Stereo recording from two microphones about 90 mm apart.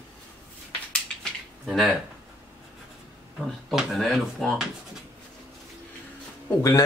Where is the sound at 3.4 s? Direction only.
Centre (ahead or behind).